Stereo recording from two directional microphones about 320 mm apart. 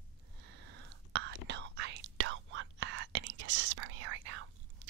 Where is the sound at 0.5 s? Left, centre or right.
Right.